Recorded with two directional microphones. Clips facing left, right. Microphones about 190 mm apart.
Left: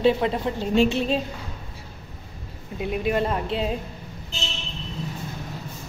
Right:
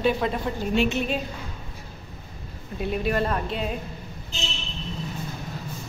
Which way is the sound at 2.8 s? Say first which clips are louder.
Left 1 dB; 15° left (ahead or behind).